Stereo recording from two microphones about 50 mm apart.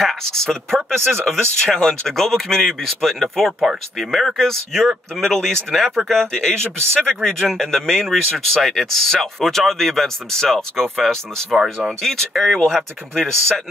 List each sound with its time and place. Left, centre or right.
0.0 s speech: centre